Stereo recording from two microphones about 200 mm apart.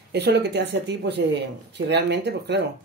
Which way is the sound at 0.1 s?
60° right (ahead or behind).